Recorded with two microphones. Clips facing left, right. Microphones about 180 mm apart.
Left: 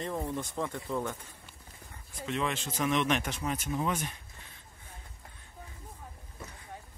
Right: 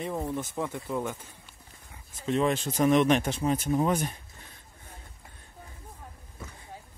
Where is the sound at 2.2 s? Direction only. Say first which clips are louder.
Right 7 dB; 35° right (ahead or behind).